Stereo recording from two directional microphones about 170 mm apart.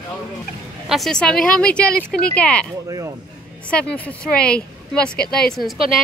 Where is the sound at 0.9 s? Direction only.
Centre (ahead or behind).